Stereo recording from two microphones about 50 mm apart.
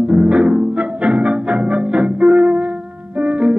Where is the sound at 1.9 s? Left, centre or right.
Right.